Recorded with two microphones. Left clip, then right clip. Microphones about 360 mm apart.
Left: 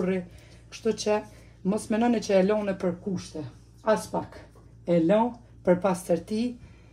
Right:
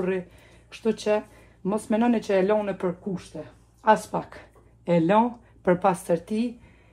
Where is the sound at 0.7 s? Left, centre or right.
Right.